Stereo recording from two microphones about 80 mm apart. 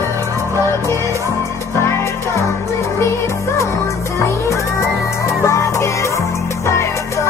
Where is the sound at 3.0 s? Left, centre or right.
Left.